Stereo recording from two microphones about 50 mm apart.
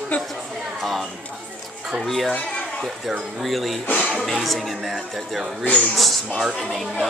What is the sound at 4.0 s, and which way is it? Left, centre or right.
Music, left.